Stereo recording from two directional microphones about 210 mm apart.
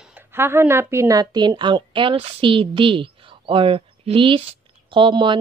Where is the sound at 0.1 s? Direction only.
10° right (ahead or behind).